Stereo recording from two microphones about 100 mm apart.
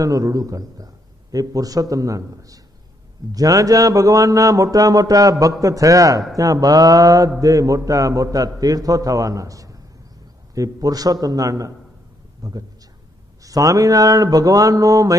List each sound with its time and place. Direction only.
0.0 s mantra: 35° right (ahead or behind)
12.4 s a man's voice: 35° right (ahead or behind)
13.4 s mantra: 35° right (ahead or behind)